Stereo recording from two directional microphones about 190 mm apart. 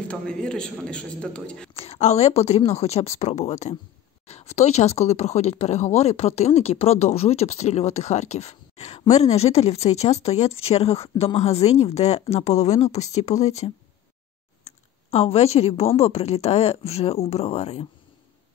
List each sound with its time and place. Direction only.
0.1 s a man's voice: 5° left (ahead or behind)
1.8 s speech: 35° left (ahead or behind)
14.6 s clicking: 30° left (ahead or behind)
16.0 s speech: 30° left (ahead or behind)